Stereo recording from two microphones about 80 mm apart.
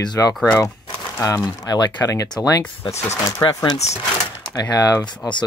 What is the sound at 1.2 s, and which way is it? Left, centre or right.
Speech, left.